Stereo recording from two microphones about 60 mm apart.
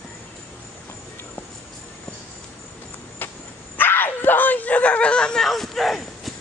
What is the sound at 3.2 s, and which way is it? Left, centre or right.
Dog, left.